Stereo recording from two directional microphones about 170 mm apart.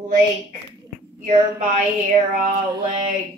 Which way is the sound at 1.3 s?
45° right (ahead or behind).